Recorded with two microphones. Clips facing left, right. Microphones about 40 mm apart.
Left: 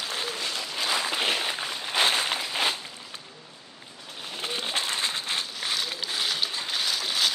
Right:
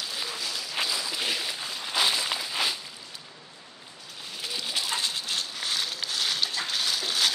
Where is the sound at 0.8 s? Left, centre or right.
Left.